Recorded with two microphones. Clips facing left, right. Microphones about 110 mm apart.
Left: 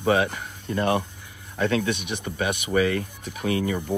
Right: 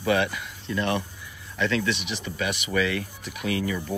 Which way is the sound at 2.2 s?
45° left (ahead or behind).